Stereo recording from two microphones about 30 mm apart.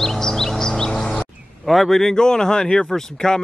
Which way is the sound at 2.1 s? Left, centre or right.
Left.